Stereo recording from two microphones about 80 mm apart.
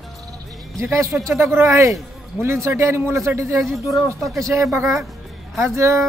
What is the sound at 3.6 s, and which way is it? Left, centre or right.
Speech, centre.